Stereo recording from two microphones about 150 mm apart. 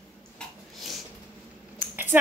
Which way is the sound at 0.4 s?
Centre (ahead or behind).